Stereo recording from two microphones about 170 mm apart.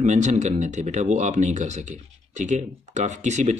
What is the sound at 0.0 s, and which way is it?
Speech, 45° right (ahead or behind).